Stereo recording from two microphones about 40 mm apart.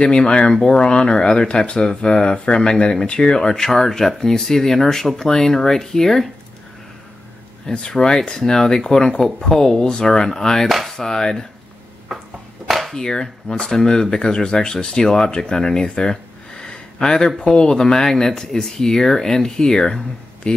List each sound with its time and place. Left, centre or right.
0.0 s speech: left
7.6 s speech: centre
12.1 s a sound: centre
12.9 s speech: centre
15.5 s a sound: centre
17.6 s speech: centre